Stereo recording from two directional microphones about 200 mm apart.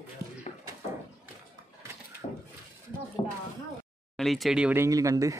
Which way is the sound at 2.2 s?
35° left (ahead or behind).